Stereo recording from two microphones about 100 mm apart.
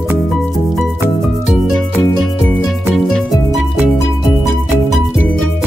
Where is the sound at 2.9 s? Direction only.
Centre (ahead or behind).